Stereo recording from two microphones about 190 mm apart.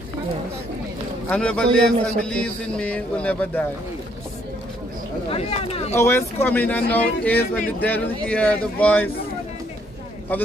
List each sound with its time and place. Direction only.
1.3 s a man's voice: 5° left (ahead or behind)
5.3 s speech: 30° left (ahead or behind)
5.9 s a man's voice: 15° left (ahead or behind)